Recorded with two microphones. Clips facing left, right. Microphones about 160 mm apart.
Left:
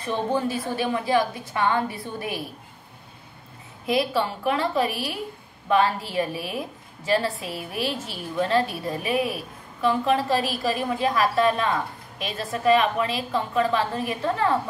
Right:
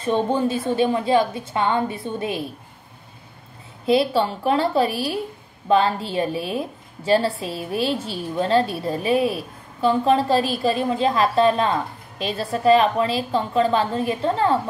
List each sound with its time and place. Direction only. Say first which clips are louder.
0.0 s a woman's voice: right 4 dB; 25° right (ahead or behind)
3.8 s a woman's voice: right 5 dB; 30° right (ahead or behind)